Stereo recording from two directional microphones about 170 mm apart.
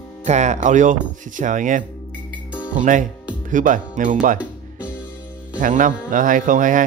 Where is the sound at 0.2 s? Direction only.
45° right (ahead or behind).